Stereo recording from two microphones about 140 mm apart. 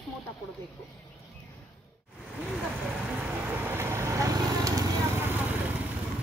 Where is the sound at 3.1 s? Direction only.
10° right (ahead or behind).